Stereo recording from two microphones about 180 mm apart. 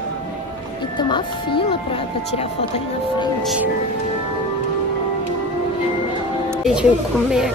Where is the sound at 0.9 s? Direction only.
25° left (ahead or behind).